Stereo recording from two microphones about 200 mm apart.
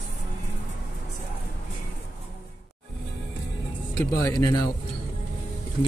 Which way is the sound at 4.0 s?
15° left (ahead or behind).